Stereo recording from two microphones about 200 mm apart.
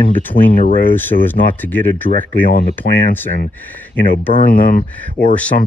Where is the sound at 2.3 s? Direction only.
45° left (ahead or behind).